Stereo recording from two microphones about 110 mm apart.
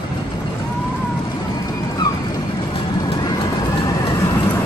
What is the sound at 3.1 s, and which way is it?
Vehicle, 40° left (ahead or behind).